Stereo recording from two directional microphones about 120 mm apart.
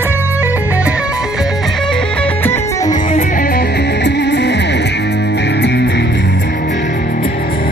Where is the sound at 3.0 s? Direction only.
90° left.